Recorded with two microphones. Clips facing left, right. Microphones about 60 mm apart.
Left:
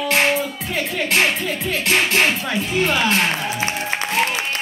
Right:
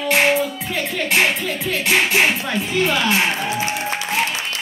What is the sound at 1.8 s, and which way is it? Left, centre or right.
Music, centre.